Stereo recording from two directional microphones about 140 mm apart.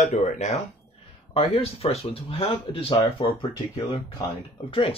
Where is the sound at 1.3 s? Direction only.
45° left (ahead or behind).